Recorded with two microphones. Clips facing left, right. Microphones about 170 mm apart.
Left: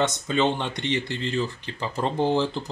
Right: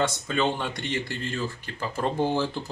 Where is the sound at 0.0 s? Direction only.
20° left (ahead or behind).